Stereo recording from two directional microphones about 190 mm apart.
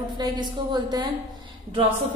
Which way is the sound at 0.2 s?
20° right (ahead or behind).